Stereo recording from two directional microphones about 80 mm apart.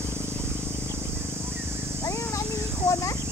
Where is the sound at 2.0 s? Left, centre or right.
Left.